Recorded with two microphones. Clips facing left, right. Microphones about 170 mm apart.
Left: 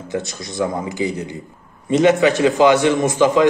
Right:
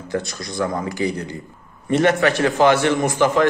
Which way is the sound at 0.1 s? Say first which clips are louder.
Even; 20° left (ahead or behind).